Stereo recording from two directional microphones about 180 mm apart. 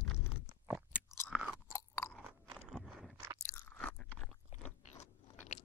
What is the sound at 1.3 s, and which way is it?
Chewing, 5° right (ahead or behind).